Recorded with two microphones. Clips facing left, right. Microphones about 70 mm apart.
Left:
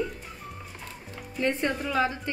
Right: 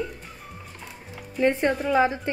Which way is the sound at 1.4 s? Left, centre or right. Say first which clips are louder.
Right 5 dB; right.